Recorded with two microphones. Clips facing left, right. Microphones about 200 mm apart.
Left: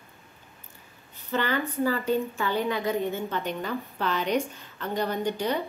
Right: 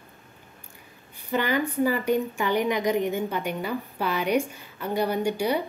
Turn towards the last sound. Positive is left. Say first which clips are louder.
# right 3 dB
turn(degrees=-10)  # may be behind; listen again after turning